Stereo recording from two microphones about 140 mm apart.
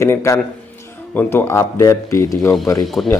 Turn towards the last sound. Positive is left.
turn(degrees=5)  # may be behind; listen again after turning